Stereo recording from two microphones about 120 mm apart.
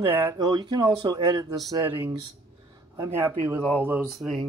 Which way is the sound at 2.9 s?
25° right (ahead or behind).